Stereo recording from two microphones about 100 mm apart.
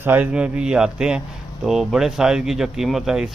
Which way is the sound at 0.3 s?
10° right (ahead or behind).